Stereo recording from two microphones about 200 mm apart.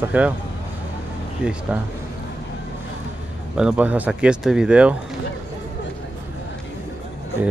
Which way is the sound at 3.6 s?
5° right (ahead or behind).